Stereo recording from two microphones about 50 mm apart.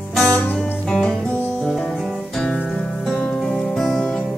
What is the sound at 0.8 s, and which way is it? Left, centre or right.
Music, centre.